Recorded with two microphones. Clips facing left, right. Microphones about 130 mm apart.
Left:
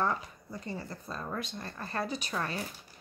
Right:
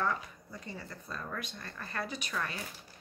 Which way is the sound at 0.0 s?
30° left (ahead or behind).